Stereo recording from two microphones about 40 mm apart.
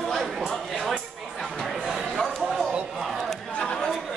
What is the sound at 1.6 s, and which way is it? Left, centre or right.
Chatter, centre.